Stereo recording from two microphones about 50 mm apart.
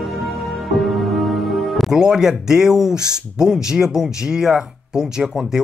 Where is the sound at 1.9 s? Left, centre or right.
Centre.